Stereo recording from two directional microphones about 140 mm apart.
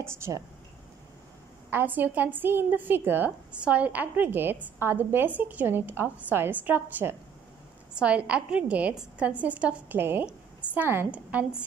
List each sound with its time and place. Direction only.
0.0 s a woman's voice: 20° right (ahead or behind)
1.7 s a woman's voice: 15° right (ahead or behind)